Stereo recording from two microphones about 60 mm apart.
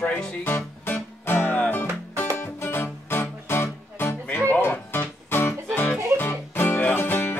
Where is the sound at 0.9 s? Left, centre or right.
Left.